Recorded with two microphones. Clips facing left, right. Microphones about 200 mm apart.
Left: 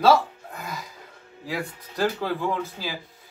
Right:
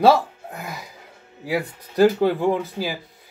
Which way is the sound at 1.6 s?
15° right (ahead or behind).